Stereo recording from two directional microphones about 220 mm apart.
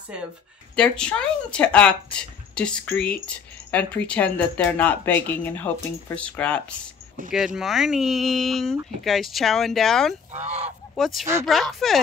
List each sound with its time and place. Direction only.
0.7 s speech: 5° left (ahead or behind)
10.3 s goose: 30° right (ahead or behind)
11.0 s speech: centre (ahead or behind)